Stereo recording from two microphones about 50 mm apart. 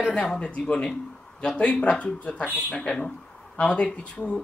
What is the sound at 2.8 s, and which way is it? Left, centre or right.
Speech, centre.